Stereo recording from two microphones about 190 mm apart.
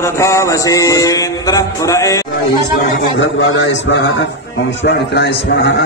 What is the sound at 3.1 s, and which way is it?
A man's voice, 75° left (ahead or behind).